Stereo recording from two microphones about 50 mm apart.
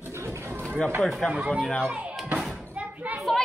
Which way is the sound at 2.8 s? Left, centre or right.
Right.